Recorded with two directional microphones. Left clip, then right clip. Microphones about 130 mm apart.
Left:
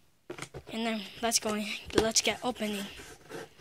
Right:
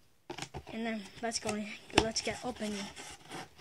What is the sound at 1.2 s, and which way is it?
Speech, 25° left (ahead or behind).